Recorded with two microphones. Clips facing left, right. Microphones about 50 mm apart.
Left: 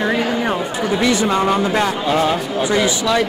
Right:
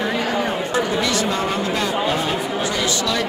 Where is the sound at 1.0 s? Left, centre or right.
Left.